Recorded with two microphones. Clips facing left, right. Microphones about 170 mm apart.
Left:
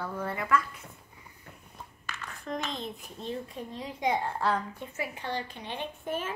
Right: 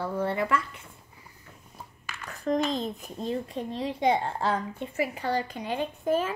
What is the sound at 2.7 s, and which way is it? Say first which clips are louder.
Speech: right 7 dB; 40° right (ahead or behind).